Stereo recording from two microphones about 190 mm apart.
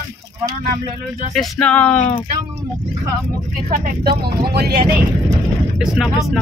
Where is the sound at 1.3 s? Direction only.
5° left (ahead or behind).